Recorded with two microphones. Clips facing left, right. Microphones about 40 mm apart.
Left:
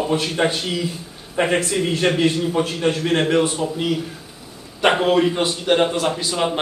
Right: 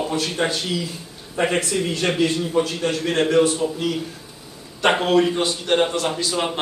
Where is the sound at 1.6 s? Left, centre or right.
Left.